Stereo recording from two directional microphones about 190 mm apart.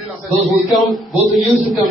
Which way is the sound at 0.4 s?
Centre (ahead or behind).